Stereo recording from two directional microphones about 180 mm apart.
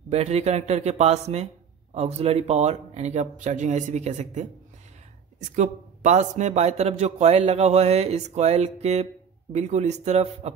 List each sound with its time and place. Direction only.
0.1 s a man's voice: 35° right (ahead or behind)
5.6 s a man's voice: 40° right (ahead or behind)